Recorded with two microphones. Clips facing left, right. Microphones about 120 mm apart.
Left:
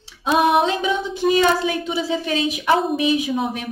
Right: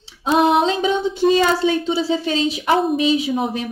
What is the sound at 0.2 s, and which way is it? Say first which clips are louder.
A woman's voice: right 1 dB; 25° right (ahead or behind).